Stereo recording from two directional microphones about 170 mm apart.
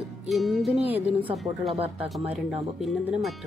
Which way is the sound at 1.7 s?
35° right (ahead or behind).